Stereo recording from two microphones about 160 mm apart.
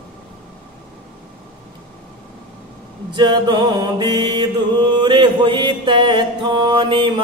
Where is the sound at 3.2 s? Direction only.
30° right (ahead or behind).